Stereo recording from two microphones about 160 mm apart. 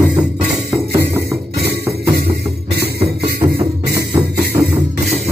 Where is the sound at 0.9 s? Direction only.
15° right (ahead or behind).